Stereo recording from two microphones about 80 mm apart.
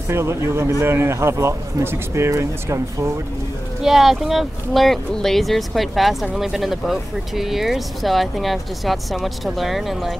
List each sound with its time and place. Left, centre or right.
0.1 s speech: right
3.8 s speech: centre